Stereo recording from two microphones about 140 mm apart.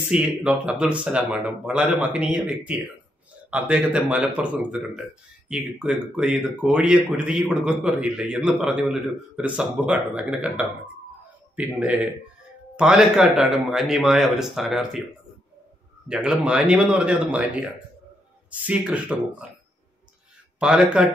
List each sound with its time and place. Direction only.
0.1 s speech: 5° right (ahead or behind)
16.1 s speech: 5° right (ahead or behind)
20.5 s speech: 5° right (ahead or behind)